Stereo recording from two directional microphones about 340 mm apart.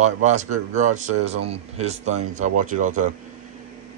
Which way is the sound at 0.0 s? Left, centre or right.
Right.